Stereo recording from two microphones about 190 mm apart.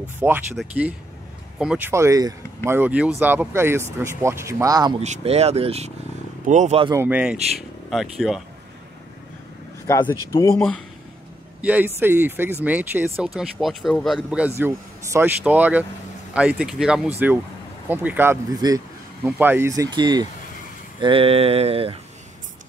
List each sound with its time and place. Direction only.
0.2 s speech: 10° right (ahead or behind)
5.0 s mantra: 35° right (ahead or behind)
6.9 s speech: 10° right (ahead or behind)
9.8 s speech: 15° left (ahead or behind)
11.6 s speech: 10° right (ahead or behind)
21.0 s mantra: 30° right (ahead or behind)